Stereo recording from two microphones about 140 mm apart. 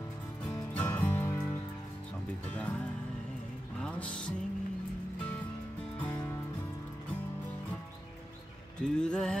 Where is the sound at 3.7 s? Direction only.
5° left (ahead or behind).